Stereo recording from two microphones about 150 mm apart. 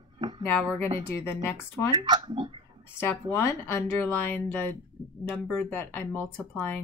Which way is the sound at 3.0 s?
15° left (ahead or behind).